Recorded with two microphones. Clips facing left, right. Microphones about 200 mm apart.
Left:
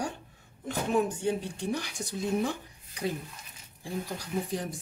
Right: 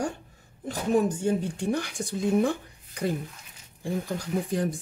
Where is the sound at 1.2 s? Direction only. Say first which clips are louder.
Right 4 dB; 50° right (ahead or behind).